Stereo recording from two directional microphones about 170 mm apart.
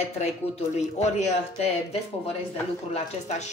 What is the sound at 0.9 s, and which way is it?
Speech, 40° left (ahead or behind).